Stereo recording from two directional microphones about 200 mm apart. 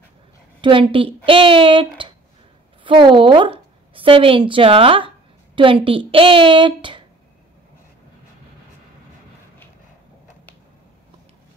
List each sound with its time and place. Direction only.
0.6 s a woman's voice: 25° right (ahead or behind)